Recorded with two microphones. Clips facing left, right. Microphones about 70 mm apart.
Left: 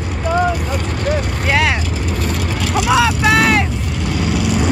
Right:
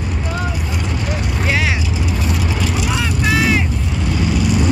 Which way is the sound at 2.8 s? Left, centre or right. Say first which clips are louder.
Left 6 dB; left.